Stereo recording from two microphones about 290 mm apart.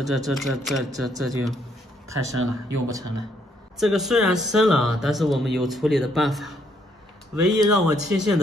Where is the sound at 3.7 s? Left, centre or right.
Centre.